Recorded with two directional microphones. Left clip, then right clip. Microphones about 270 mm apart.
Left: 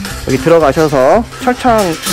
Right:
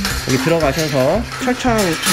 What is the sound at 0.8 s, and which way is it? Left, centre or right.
Speech, left.